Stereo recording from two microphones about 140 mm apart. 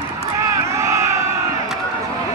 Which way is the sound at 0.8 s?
20° right (ahead or behind).